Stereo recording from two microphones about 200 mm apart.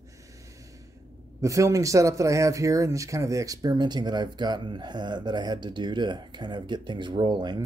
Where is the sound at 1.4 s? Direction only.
15° right (ahead or behind).